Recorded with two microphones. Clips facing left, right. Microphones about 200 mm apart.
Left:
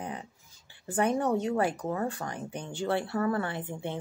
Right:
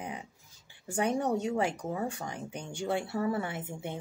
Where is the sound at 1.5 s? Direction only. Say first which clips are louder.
Left 2 dB; 10° right (ahead or behind).